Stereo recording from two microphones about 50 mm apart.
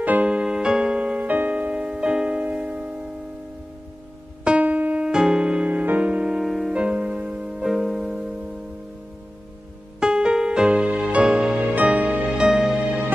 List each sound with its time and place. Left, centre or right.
0.0 s music: right
0.3 s music: centre
1.2 s music: right
4.5 s music: right
5.0 s music: centre
5.7 s music: right
6.4 s music: centre
6.7 s music: right
7.6 s music: centre
9.9 s music: centre
12.3 s music: centre